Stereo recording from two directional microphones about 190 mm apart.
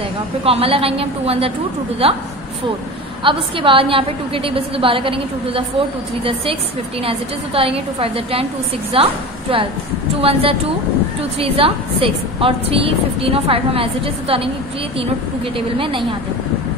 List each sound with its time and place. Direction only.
0.4 s a woman's voice: 30° right (ahead or behind)
3.3 s a woman's voice: 25° right (ahead or behind)